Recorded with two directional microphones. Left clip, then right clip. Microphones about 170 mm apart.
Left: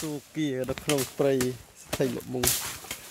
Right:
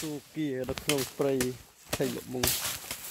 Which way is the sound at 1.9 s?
55° left (ahead or behind).